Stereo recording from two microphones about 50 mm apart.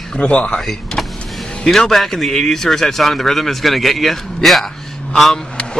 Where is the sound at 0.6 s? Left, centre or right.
Centre.